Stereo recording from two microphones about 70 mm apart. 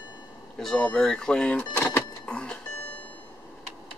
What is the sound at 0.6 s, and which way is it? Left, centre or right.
Speech, centre.